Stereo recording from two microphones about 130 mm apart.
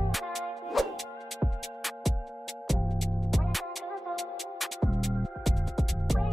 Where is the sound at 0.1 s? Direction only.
Centre (ahead or behind).